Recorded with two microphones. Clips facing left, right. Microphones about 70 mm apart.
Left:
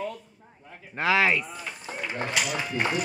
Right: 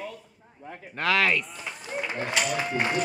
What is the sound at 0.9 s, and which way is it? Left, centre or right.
Speech, centre.